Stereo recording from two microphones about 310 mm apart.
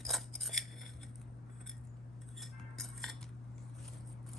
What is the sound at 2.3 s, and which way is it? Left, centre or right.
Cutlery, centre.